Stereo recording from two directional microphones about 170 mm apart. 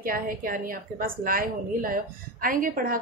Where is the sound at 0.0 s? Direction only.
55° right (ahead or behind).